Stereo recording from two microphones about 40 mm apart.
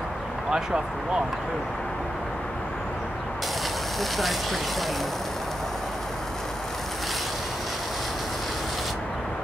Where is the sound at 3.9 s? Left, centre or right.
Centre.